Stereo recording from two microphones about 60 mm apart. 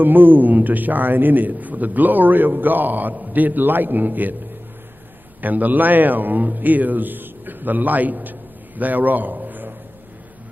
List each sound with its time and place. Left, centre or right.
0.0 s a man's voice: right
5.4 s a man's voice: right